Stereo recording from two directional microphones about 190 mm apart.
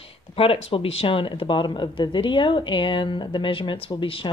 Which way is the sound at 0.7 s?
30° left (ahead or behind).